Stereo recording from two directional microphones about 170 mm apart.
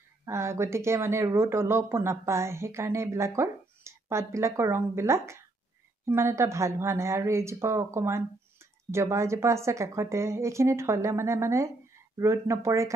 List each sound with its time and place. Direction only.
0.2 s speech: 15° right (ahead or behind)